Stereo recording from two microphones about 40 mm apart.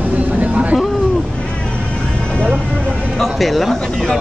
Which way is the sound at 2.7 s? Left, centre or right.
Centre.